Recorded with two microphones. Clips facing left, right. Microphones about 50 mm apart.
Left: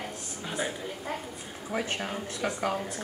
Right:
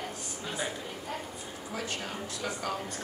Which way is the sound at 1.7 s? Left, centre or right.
Left.